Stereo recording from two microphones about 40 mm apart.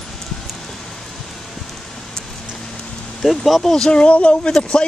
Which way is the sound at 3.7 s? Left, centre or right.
Centre.